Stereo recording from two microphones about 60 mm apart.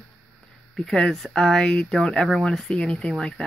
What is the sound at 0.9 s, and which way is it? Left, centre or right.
Speech, centre.